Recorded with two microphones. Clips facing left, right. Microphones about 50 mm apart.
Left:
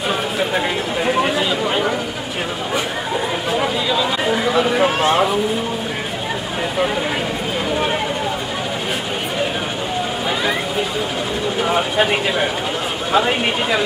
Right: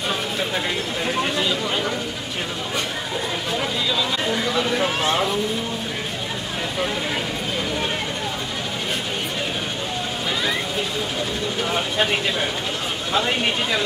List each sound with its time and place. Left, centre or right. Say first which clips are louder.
1.0 s speech: left 5 dB; centre
3.5 s a sound: left 5 dB; centre
11.6 s speech: left 5 dB; centre